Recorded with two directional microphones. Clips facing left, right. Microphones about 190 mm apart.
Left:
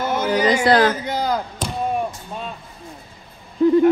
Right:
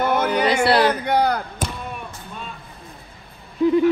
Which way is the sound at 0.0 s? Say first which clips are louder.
Even; 60° right (ahead or behind).